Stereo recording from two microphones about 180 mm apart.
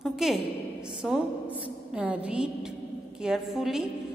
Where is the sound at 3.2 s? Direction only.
Centre (ahead or behind).